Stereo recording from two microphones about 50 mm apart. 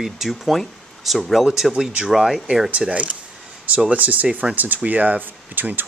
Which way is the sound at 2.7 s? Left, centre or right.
Right.